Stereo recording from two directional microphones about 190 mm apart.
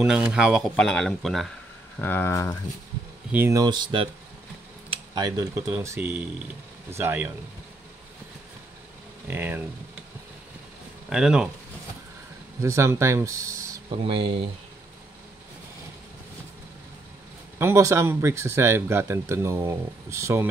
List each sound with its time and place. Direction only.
0.0 s speech: 5° right (ahead or behind); by 2.5 s 15° left (ahead or behind)
3.3 s speech: 10° right (ahead or behind)
4.8 s a sound: 25° right (ahead or behind)
5.7 s speech: 10° right (ahead or behind)
9.3 s speech: 10° right (ahead or behind)
11.1 s speech: 5° right (ahead or behind)
12.6 s speech: 15° right (ahead or behind)
13.8 s speech: 30° right (ahead or behind)
17.6 s speech: 15° right (ahead or behind)